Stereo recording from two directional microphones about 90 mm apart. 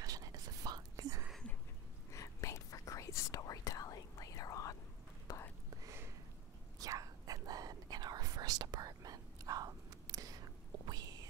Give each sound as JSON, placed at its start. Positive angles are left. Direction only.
{"t": 0.0, "sound": "whispering", "side_deg": -40}
{"t": 2.0, "sound": "whispering", "side_deg": 35}
{"t": 6.8, "sound": "whispering", "side_deg": -40}